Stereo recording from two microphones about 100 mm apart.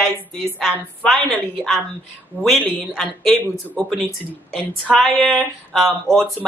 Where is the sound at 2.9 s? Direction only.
5° left (ahead or behind).